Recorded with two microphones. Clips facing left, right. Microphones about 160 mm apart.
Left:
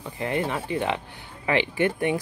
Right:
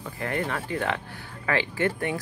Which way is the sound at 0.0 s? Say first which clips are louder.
Left 3 dB; 20° left (ahead or behind).